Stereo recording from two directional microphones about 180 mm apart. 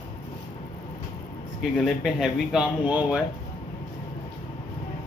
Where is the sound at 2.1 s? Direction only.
5° right (ahead or behind).